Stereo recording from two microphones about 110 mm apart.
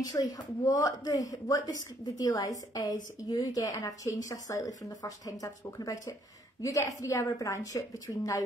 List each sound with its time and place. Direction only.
0.0 s a woman's voice: 35° left (ahead or behind)